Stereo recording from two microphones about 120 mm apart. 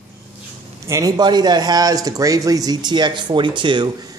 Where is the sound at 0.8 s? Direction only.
25° right (ahead or behind).